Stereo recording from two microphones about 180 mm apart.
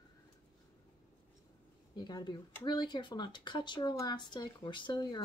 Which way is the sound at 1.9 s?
25° left (ahead or behind).